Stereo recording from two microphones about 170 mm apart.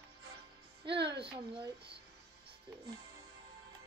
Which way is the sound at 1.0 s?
75° right (ahead or behind).